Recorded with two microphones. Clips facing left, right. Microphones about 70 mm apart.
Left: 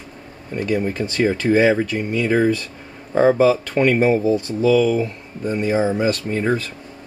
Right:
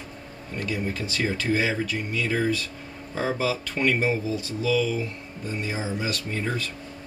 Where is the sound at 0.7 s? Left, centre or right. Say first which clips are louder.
Left 9 dB; left.